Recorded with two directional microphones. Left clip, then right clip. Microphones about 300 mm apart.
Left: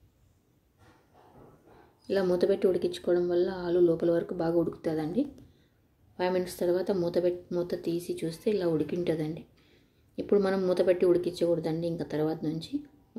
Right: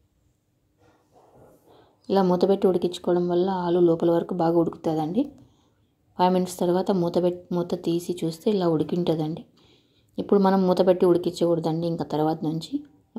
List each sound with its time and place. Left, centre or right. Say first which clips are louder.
2.0 s speech: right 5 dB; centre